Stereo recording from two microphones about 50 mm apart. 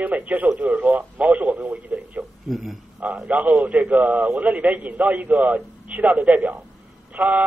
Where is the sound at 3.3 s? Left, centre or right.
Right.